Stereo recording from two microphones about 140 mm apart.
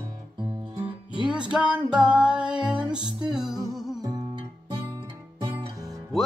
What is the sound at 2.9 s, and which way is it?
Music, 30° right (ahead or behind).